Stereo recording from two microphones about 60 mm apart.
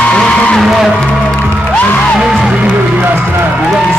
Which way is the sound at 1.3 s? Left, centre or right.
Centre.